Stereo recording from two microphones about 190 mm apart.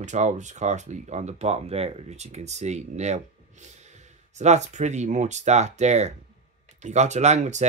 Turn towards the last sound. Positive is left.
turn(degrees=-40)  # may be behind; listen again after turning